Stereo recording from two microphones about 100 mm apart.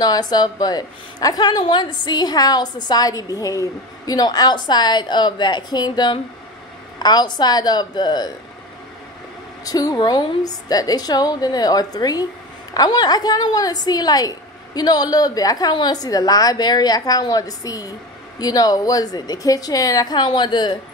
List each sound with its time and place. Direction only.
0.0 s a woman's voice: 40° left (ahead or behind)
9.7 s a woman's voice: 40° left (ahead or behind)